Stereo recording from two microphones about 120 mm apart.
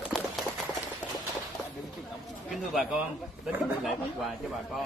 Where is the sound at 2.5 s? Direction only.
5° right (ahead or behind).